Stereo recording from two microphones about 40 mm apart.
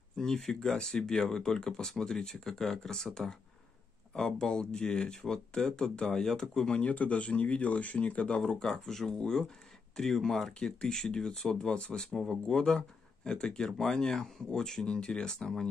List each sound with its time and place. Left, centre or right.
0.1 s a sound: centre
0.4 s speech: centre
6.7 s speech: left
8.5 s speech: centre